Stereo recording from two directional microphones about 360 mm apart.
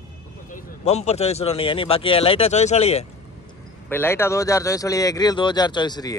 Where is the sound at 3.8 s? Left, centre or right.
Centre.